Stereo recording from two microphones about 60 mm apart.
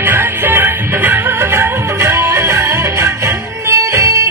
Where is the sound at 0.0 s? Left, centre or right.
Right.